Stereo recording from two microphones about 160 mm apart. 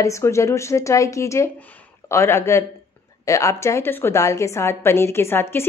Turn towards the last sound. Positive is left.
turn(degrees=15)  # may be behind; listen again after turning